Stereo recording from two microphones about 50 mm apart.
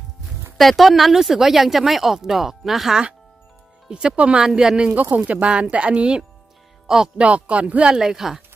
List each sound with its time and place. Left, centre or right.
0.6 s speech: centre
3.9 s speech: centre
4.9 s speech: right
7.9 s speech: centre